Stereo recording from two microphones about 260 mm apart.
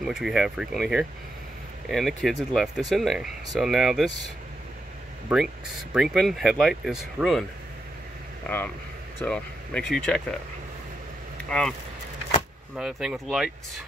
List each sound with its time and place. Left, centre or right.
0.0 s speech: centre
5.3 s speech: centre
8.5 s speech: centre
12.7 s speech: centre